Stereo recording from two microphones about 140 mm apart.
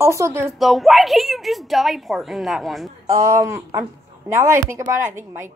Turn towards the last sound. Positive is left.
turn(degrees=-20)  # may be behind; listen again after turning